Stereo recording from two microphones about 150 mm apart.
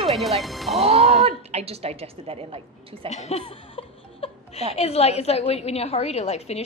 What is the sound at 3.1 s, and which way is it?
Speech, 40° left (ahead or behind).